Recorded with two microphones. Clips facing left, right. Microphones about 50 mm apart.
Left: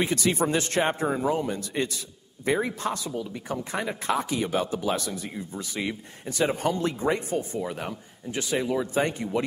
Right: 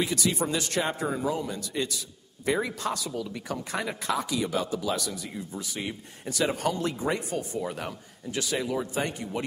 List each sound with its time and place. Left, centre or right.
0.0 s a man's voice: left